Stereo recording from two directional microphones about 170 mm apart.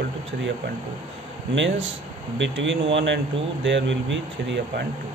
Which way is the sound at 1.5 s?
90° right.